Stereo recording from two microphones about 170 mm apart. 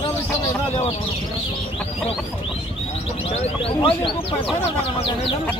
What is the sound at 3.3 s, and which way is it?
Speech, 35° left (ahead or behind).